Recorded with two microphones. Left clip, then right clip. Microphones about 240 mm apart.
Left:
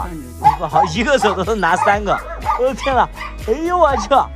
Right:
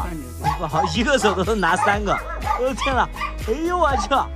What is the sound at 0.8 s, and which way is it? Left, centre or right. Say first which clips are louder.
Speech: left 5 dB; centre.